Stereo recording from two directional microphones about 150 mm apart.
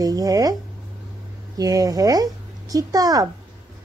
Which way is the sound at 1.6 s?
25° right (ahead or behind).